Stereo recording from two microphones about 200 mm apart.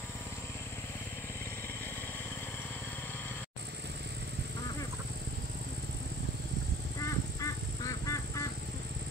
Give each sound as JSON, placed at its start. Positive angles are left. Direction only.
{"t": 7.0, "sound": "crow", "side_deg": 15}